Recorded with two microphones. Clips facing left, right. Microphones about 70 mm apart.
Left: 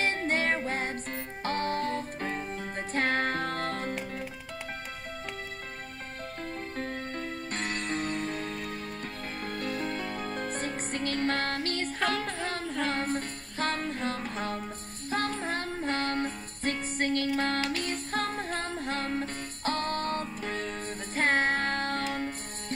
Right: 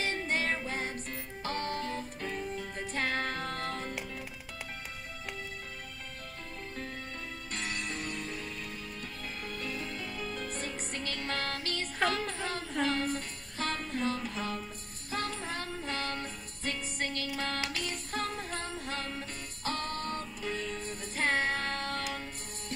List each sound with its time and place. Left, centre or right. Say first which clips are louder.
0.0 s music: left 4 dB; left
6.8 s music: left 7 dB; left
12.3 s a sound: left 3 dB; left
12.8 s music: left 1 dB; left